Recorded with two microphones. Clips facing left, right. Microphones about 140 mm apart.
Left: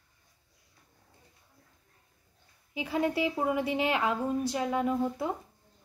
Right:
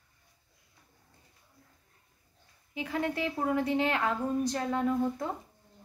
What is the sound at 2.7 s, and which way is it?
Speech, 15° left (ahead or behind).